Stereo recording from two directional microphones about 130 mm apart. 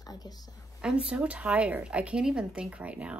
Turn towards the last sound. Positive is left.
turn(degrees=-10)  # may be behind; listen again after turning